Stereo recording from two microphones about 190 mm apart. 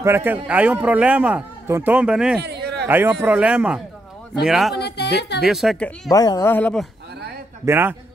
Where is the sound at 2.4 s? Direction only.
60° right (ahead or behind).